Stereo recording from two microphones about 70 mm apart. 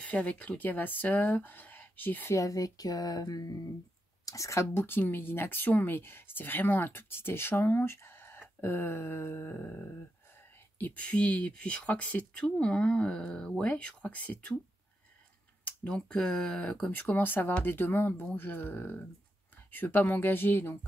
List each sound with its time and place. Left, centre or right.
0.0 s speech: centre
2.3 s speech: left
4.3 s speech: left
15.9 s speech: centre
16.9 s speech: left